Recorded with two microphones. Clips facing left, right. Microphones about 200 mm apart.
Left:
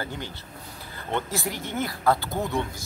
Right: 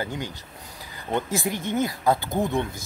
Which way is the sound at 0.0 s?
15° right (ahead or behind).